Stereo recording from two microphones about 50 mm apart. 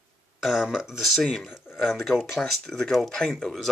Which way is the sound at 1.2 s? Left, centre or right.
Centre.